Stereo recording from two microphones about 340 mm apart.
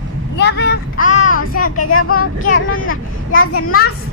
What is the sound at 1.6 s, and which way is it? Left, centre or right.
Speech, left.